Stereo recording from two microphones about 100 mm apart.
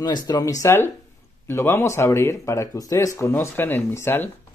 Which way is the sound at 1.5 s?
25° left (ahead or behind).